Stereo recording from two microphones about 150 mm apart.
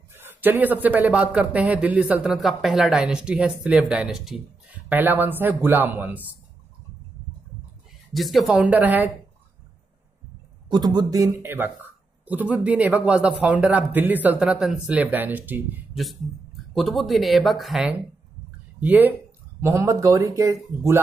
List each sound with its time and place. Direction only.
0.1 s speech: 15° right (ahead or behind)
4.7 s speech: 10° right (ahead or behind)
8.1 s speech: centre (ahead or behind)
10.7 s speech: 30° right (ahead or behind); by 15.8 s 10° right (ahead or behind)
16.7 s speech: centre (ahead or behind); by 21.0 s 20° right (ahead or behind)